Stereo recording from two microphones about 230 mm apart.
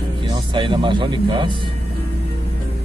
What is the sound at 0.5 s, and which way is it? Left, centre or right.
Speech, right.